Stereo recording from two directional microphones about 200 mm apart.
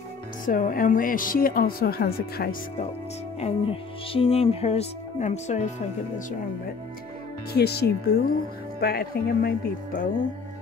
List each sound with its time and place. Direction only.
0.5 s speech: 45° left (ahead or behind)
3.3 s speech: 30° left (ahead or behind)
7.5 s speech: 55° left (ahead or behind)